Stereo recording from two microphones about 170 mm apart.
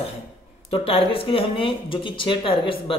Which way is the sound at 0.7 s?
35° left (ahead or behind).